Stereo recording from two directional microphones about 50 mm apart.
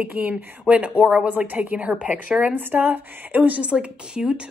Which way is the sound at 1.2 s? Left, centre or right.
Right.